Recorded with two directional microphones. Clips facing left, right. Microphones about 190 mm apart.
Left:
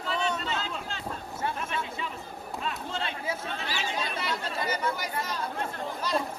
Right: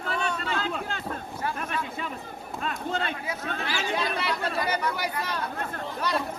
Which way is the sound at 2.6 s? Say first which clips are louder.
Right 4 dB; 50° right (ahead or behind).